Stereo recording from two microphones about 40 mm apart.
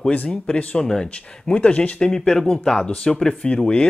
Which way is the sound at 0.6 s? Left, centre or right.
Left.